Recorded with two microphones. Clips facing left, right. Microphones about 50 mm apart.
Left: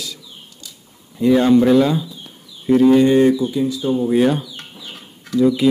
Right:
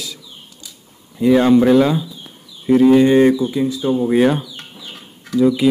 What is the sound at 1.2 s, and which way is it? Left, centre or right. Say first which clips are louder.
Speech: right 1 dB; centre.